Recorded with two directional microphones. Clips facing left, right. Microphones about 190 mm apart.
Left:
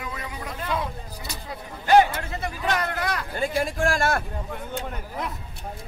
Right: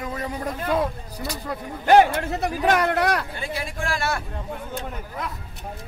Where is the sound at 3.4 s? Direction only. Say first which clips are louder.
Left 5 dB; 45° left (ahead or behind).